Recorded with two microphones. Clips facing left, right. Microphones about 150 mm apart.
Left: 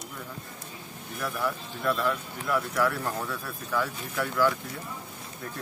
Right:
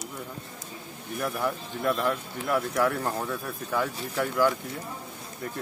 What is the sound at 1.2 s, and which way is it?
Speech, 25° right (ahead or behind).